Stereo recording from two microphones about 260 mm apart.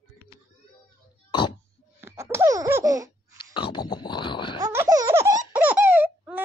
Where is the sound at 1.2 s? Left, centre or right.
Centre.